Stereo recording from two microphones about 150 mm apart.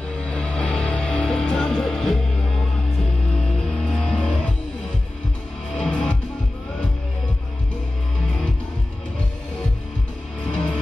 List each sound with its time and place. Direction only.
0.2 s music: 5° left (ahead or behind)
5.8 s music: 5° left (ahead or behind)
10.4 s music: 5° left (ahead or behind)